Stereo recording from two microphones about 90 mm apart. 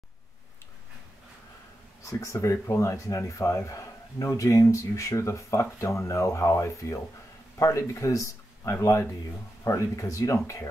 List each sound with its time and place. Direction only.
2.0 s speech: 35° left (ahead or behind)